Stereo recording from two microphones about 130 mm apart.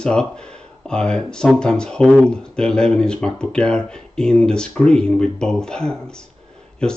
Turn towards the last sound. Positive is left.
turn(degrees=5)  # may be behind; listen again after turning